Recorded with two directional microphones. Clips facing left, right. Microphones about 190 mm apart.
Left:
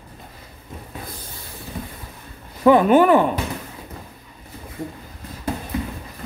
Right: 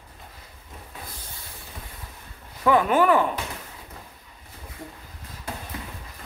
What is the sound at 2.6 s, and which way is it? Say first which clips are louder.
Speech: left 6 dB; 25° left (ahead or behind).